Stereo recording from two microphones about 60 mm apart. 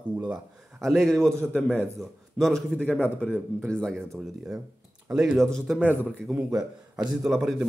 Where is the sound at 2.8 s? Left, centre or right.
Left.